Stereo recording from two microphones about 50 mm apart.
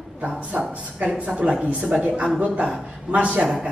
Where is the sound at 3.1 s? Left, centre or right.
Right.